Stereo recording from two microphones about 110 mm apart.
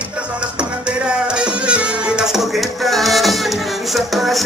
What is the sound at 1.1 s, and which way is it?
Music, 10° right (ahead or behind).